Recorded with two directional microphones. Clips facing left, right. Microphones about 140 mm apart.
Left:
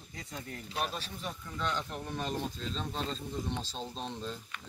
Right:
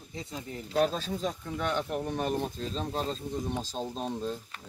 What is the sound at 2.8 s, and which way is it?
Speech, 40° right (ahead or behind).